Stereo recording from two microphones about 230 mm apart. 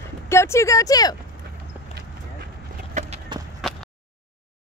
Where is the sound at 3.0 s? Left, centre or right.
Right.